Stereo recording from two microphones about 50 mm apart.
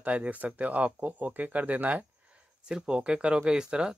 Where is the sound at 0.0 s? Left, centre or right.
Right.